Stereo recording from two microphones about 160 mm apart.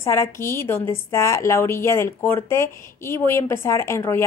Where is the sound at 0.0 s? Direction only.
15° left (ahead or behind).